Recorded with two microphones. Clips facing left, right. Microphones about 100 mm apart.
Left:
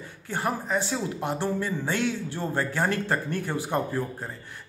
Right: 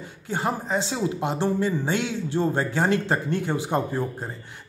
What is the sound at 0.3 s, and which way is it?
Speech, 20° right (ahead or behind).